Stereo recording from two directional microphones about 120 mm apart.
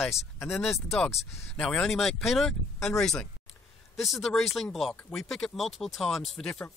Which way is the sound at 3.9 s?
Centre (ahead or behind).